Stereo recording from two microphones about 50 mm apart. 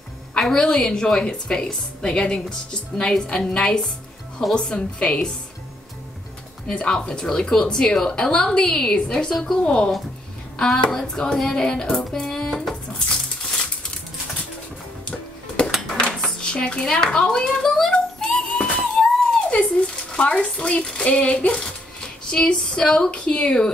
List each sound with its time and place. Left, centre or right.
0.4 s a woman's voice: centre
6.7 s a woman's voice: left
13.1 s a sound: centre
15.0 s music: left
15.9 s dishes: centre
17.0 s a sound: centre
19.5 s speech: left